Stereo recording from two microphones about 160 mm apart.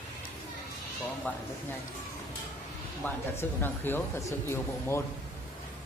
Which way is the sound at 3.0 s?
10° left (ahead or behind).